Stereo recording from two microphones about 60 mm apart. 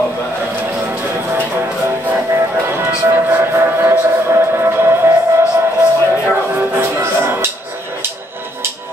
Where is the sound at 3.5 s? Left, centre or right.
Right.